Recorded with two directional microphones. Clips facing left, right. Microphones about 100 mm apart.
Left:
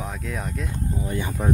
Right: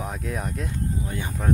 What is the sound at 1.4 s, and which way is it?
Speech, 15° left (ahead or behind).